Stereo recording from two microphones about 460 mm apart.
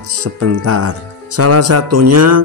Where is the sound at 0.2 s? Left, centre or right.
Right.